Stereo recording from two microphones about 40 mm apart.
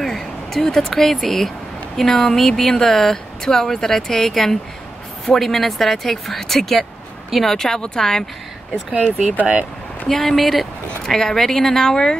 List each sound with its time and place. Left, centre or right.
0.0 s speech: centre
9.4 s speech: right
10.0 s speech: centre